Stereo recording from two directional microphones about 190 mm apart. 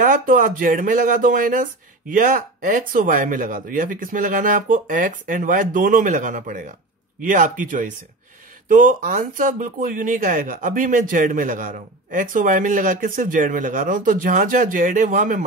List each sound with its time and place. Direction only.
0.0 s speech: 45° right (ahead or behind)